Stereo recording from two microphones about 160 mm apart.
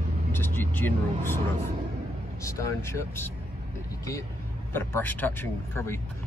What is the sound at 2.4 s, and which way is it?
Speech, 20° left (ahead or behind).